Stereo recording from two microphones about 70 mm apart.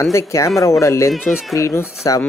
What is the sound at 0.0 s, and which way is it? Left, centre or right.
Speech, left.